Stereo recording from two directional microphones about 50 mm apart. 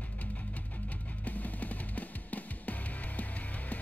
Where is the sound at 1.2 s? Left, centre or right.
Left.